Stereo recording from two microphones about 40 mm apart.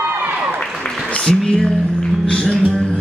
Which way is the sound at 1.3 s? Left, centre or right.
Centre.